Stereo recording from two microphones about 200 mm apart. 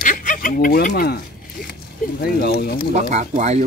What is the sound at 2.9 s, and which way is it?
Speech, 35° right (ahead or behind).